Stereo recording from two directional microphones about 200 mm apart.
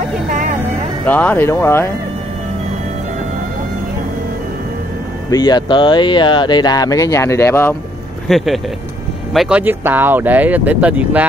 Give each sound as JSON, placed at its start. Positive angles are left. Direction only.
{"t": 1.0, "sound": "speech", "side_deg": 10}
{"t": 5.3, "sound": "speech", "side_deg": 20}
{"t": 8.3, "sound": "speech", "side_deg": 0}